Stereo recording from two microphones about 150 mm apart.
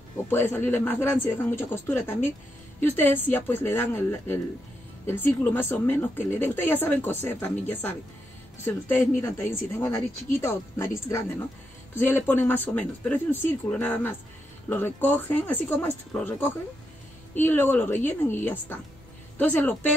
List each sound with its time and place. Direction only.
0.3 s speech: 15° left (ahead or behind)